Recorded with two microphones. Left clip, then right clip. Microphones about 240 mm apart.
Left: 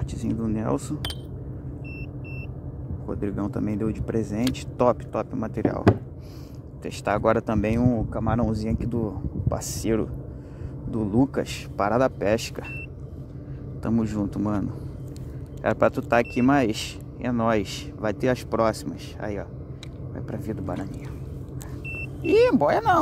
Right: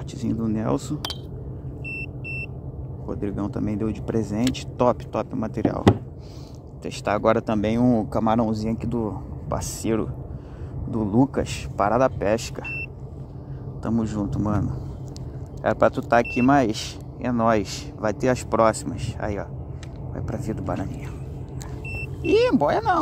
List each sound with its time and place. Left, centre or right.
0.4 s speech: centre
3.1 s speech: centre
7.9 s speech: centre
8.4 s speech: centre
13.8 s speech: centre
22.2 s speech: centre